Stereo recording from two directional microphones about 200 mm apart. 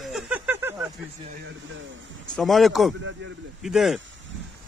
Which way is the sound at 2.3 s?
Centre (ahead or behind).